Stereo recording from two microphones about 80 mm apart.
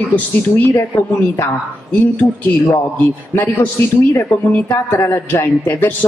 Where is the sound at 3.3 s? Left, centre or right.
Left.